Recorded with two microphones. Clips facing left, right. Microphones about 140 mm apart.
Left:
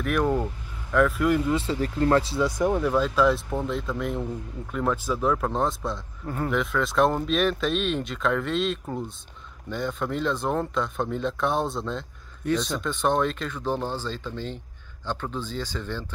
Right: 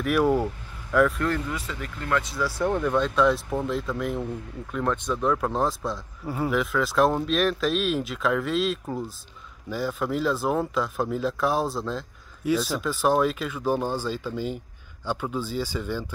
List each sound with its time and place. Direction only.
0.0 s speech: 5° right (ahead or behind)
1.5 s speech: 30° left (ahead or behind)
2.5 s speech: 10° left (ahead or behind); by 16.1 s 10° right (ahead or behind)